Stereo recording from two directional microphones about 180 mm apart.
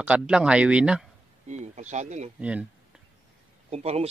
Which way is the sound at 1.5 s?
40° right (ahead or behind).